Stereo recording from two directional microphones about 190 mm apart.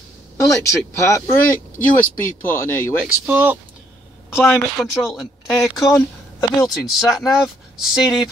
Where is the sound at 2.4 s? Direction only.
10° left (ahead or behind).